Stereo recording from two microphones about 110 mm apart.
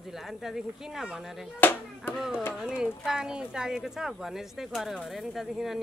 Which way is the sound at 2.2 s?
5° right (ahead or behind).